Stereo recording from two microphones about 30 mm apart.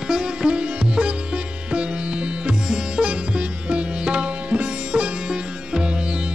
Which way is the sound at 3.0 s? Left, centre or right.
Right.